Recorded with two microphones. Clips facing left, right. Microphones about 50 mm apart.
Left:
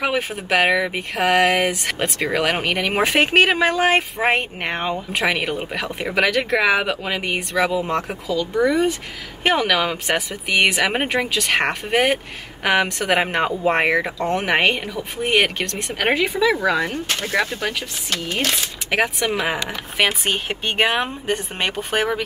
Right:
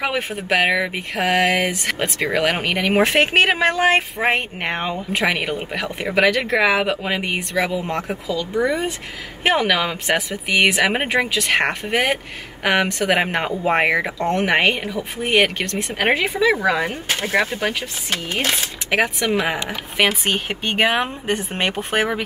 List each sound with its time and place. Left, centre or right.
0.0 s speech: centre
8.5 s speech: centre; by 18.7 s right
19.2 s speech: centre